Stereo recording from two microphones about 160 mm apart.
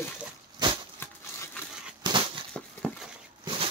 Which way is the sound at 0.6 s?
25° right (ahead or behind).